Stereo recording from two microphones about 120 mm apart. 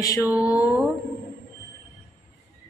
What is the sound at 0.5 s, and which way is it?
Mantra, 10° right (ahead or behind).